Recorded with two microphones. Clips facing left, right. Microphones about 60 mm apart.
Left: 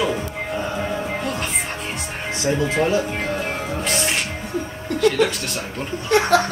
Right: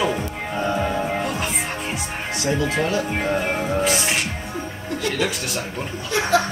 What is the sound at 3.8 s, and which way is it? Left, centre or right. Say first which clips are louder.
Speech: right 1 dB; centre.